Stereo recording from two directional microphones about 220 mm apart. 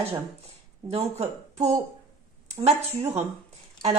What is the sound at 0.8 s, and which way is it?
Speech, 30° right (ahead or behind).